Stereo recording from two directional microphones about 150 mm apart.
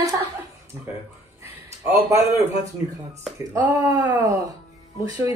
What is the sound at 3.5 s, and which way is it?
Speech, 25° right (ahead or behind).